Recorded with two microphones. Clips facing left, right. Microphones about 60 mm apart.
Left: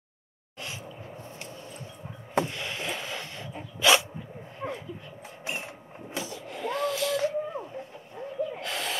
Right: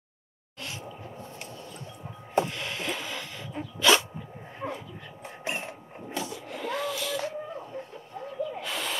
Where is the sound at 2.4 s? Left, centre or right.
Centre.